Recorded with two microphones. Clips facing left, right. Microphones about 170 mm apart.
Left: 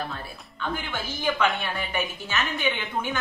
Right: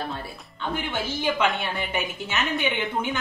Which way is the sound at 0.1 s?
20° right (ahead or behind).